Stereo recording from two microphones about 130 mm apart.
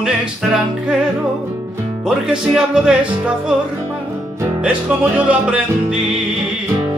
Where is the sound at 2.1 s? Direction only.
5° right (ahead or behind).